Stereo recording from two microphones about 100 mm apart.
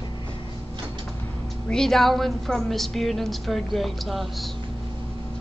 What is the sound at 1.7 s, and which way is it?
A woman's voice, 5° left (ahead or behind).